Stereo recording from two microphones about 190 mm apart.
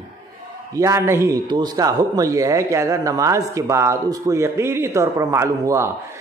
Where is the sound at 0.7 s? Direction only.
15° right (ahead or behind).